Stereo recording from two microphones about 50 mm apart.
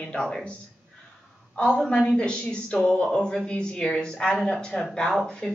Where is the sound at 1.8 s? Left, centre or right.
Left.